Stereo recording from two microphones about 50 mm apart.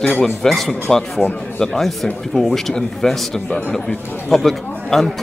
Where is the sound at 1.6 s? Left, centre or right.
Centre.